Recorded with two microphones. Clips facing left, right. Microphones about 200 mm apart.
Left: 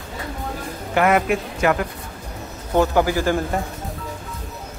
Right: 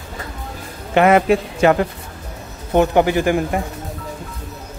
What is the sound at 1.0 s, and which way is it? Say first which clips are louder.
A man's voice: right 5 dB; 25° right (ahead or behind).